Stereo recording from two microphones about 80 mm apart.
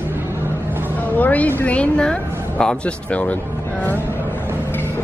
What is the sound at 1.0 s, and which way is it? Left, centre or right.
A woman's voice, left.